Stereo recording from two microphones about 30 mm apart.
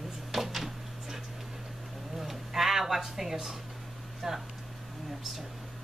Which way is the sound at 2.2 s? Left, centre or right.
Centre.